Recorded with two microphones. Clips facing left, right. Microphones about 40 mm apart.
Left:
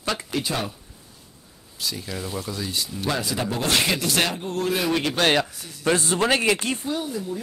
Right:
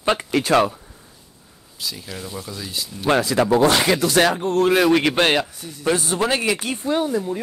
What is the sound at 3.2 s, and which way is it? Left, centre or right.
Speech, right.